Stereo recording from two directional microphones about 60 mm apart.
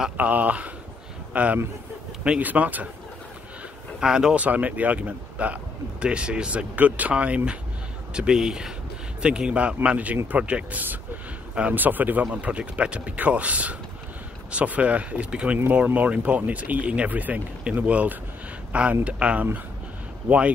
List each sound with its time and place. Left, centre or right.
0.2 s a man's voice: right
4.0 s speech: centre
4.4 s speech: right